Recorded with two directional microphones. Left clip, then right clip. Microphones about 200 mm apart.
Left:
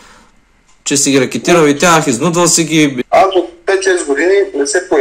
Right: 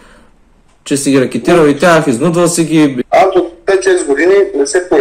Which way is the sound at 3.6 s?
15° right (ahead or behind).